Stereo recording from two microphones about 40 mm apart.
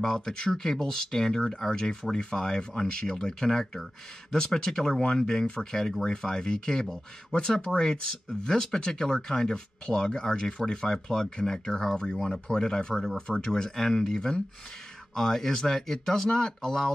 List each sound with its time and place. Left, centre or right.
0.0 s speech: centre